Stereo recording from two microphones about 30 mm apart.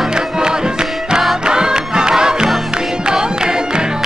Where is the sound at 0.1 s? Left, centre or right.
Right.